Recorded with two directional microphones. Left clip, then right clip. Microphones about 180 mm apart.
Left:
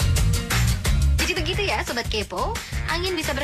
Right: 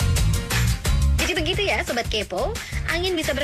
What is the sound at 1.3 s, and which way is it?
Music, 15° right (ahead or behind).